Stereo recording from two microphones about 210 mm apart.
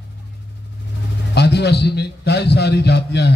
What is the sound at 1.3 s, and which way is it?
A man's voice, 55° left (ahead or behind).